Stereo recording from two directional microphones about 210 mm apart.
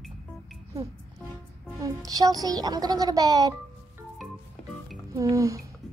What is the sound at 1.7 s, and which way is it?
A woman's voice, 15° right (ahead or behind).